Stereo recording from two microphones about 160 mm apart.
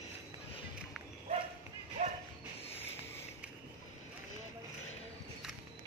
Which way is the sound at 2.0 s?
45° right (ahead or behind).